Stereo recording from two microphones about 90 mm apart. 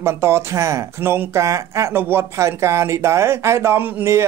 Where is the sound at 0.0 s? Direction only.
30° right (ahead or behind).